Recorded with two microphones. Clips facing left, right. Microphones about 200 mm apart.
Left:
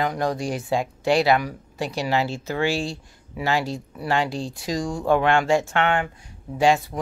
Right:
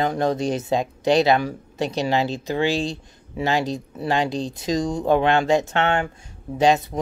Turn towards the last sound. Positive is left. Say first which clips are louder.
# right 1 dB
turn(degrees=-20)  # may be behind; listen again after turning